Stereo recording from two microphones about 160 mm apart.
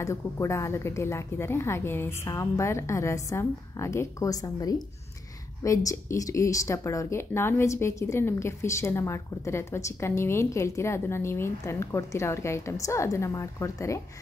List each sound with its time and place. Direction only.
0.0 s speech: 15° left (ahead or behind)